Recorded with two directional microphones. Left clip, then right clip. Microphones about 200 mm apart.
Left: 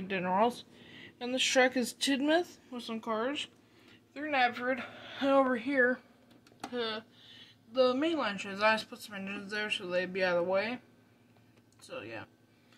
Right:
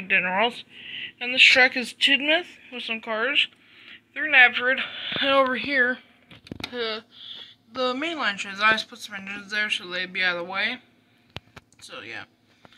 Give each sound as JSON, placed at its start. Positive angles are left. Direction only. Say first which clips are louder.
{"t": 0.2, "sound": "speech", "louder": "right 6 dB", "side_deg": 15}
{"t": 5.4, "sound": "speech", "louder": "right 7 dB", "side_deg": -10}
{"t": 11.9, "sound": "speech", "louder": "right 5 dB", "side_deg": -5}